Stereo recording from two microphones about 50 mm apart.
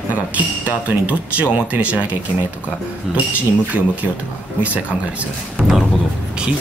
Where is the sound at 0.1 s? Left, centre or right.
Right.